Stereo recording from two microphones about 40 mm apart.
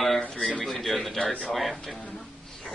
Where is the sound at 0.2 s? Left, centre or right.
Left.